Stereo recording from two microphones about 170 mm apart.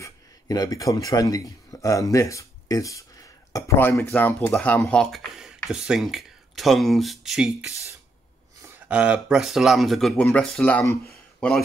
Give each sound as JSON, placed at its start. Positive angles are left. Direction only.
{"t": 0.0, "sound": "a man's voice", "side_deg": 20}
{"t": 8.7, "sound": "speech", "side_deg": -5}